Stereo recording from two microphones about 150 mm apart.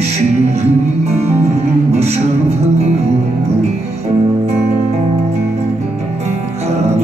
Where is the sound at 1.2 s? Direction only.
15° right (ahead or behind).